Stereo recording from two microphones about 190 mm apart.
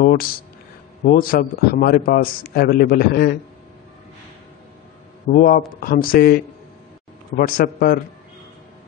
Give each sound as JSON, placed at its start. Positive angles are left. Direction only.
{"t": 0.0, "sound": "a man's voice", "side_deg": 50}
{"t": 5.3, "sound": "a man's voice", "side_deg": 50}